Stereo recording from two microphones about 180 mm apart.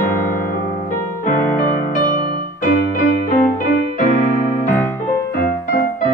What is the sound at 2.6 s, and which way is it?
Music, 50° left (ahead or behind).